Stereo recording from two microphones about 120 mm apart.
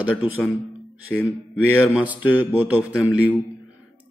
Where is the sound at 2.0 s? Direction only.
15° right (ahead or behind).